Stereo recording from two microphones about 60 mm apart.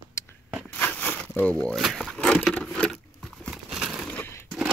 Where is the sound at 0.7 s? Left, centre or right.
Left.